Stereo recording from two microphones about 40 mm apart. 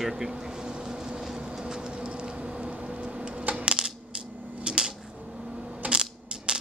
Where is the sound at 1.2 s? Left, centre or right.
Centre.